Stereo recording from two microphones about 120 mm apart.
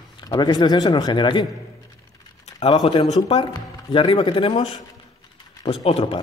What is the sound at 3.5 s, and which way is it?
Speech, 45° left (ahead or behind).